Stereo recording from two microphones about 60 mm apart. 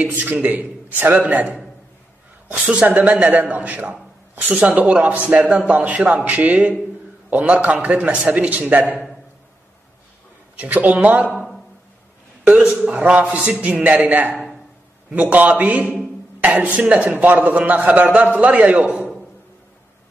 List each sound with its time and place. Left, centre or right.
0.0 s a man's voice: right
2.6 s a man's voice: right
10.6 s a man's voice: right
11.3 s a sound: centre
12.4 s a man's voice: centre
12.9 s a man's voice: right